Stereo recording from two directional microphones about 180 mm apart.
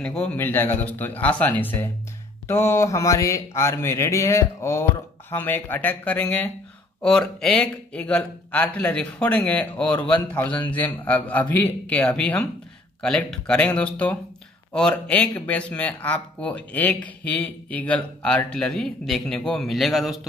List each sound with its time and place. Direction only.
0.0 s speech: 5° left (ahead or behind)